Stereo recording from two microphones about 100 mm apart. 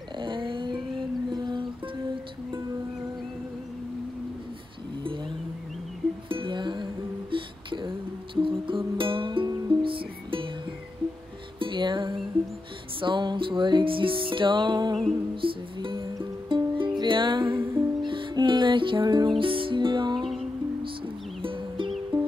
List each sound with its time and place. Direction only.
0.2 s a sound: 55° right (ahead or behind)
1.3 s music: 45° right (ahead or behind)
6.2 s music: 55° right (ahead or behind)
11.6 s music: 50° right (ahead or behind)
21.4 s music: 60° right (ahead or behind)